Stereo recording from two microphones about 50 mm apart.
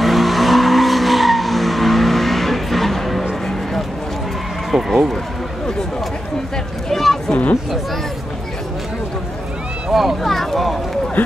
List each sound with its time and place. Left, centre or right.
0.0 s vehicle: centre
4.6 s speech: centre
6.9 s a sound: centre
9.9 s speech: centre
11.2 s speech: left